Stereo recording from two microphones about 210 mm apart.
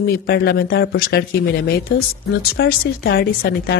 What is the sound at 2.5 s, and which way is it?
Speech, 50° left (ahead or behind).